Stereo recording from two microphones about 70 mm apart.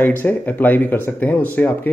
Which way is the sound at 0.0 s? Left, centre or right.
Left.